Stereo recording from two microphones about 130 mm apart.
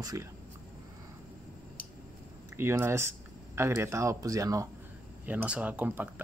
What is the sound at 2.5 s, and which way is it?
Speech, 20° right (ahead or behind).